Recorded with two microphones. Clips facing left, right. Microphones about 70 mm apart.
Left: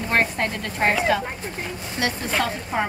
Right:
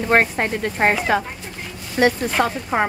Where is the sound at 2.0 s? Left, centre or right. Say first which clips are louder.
Right 7 dB; right.